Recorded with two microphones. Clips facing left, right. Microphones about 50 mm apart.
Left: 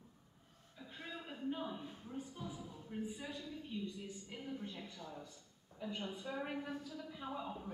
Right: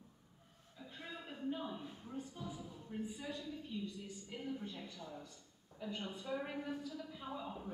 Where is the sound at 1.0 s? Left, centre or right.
Centre.